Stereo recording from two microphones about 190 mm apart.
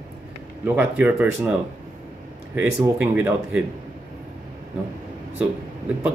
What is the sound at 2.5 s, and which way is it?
Speech, 10° right (ahead or behind).